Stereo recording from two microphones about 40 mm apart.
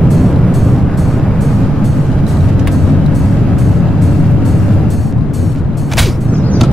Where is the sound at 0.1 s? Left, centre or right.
Centre.